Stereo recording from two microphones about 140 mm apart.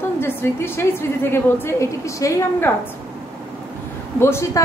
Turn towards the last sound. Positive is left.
turn(degrees=20)  # may be behind; listen again after turning